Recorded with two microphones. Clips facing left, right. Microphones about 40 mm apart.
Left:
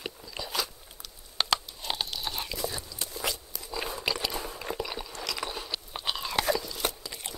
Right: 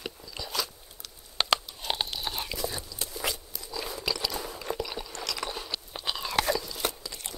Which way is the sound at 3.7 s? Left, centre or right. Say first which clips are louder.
Left 1 dB; left.